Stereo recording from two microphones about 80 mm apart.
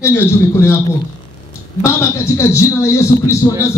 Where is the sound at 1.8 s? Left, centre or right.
Left.